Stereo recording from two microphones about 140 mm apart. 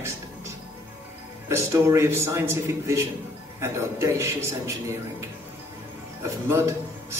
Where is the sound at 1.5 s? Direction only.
20° right (ahead or behind).